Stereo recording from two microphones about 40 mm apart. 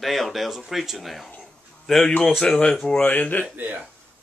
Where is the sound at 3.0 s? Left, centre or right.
Left.